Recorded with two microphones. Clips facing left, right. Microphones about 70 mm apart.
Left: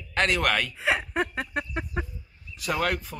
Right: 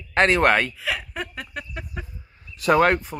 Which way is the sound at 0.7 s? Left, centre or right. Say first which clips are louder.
Left 3 dB; left.